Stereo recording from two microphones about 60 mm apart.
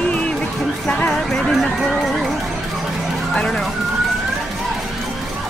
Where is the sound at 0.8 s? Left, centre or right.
Centre.